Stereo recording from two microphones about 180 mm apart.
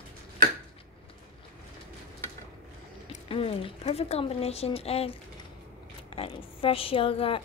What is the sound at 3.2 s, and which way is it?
Speech, 30° left (ahead or behind).